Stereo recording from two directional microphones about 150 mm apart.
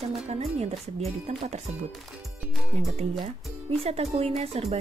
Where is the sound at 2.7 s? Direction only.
45° right (ahead or behind).